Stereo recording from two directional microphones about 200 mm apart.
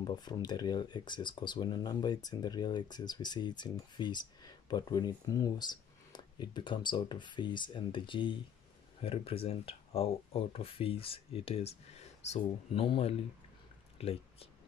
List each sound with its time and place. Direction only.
0.0 s speech: 20° left (ahead or behind)